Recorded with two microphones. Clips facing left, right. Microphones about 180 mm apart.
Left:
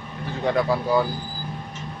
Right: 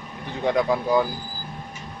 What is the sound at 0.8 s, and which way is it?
Mantra, 15° right (ahead or behind).